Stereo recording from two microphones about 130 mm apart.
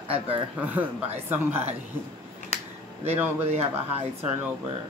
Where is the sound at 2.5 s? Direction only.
55° left (ahead or behind).